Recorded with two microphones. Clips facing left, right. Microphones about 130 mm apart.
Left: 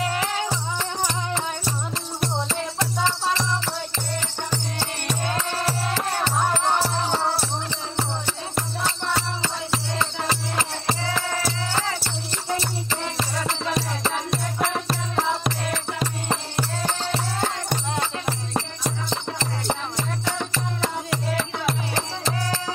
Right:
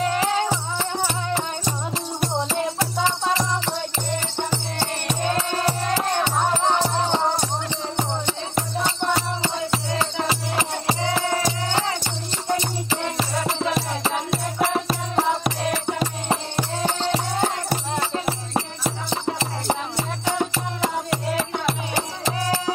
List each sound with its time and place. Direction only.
2.8 s music: 10° right (ahead or behind)
6.2 s music: 15° right (ahead or behind)
8.5 s music: centre (ahead or behind)
13.2 s music: 10° right (ahead or behind)
18.2 s jingle bell: 5° right (ahead or behind)
19.4 s music: 5° right (ahead or behind)